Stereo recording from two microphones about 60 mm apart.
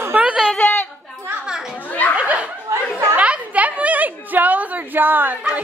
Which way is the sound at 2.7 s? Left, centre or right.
Right.